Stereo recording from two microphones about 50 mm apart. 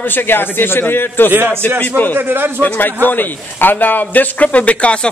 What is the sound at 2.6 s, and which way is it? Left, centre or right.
A man's voice, left.